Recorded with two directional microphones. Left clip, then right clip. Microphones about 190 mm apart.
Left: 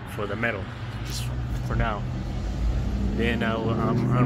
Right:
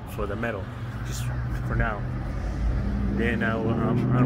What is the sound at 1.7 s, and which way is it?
Speech, 15° left (ahead or behind).